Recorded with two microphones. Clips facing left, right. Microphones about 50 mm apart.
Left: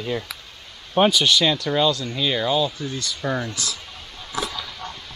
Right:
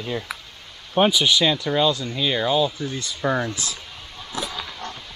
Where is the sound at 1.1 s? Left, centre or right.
Centre.